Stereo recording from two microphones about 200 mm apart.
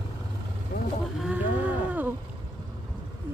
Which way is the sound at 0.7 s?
45° left (ahead or behind).